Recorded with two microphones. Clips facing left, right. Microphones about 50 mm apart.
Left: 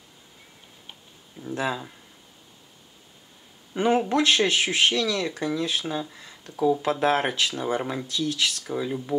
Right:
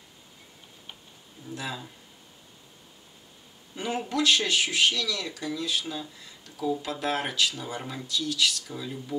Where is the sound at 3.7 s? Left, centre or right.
Left.